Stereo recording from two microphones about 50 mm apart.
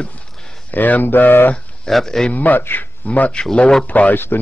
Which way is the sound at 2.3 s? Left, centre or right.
Left.